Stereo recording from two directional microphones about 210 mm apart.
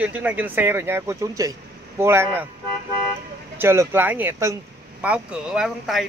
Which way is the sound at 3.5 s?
10° right (ahead or behind).